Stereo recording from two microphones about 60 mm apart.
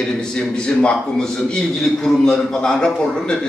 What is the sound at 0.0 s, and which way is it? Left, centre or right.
A man's voice, centre.